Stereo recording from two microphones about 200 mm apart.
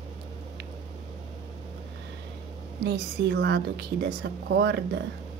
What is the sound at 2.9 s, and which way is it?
A woman's voice, 60° right (ahead or behind).